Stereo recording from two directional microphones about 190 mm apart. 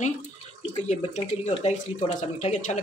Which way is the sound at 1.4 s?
35° left (ahead or behind).